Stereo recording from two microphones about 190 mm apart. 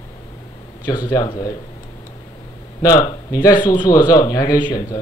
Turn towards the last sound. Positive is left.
turn(degrees=20)  # may be behind; listen again after turning